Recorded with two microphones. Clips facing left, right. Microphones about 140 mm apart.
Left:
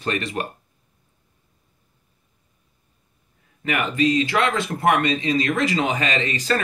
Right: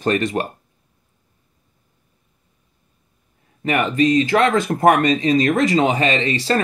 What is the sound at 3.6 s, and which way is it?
Speech, 35° right (ahead or behind).